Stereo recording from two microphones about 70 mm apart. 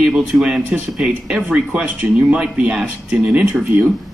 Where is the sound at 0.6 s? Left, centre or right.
Right.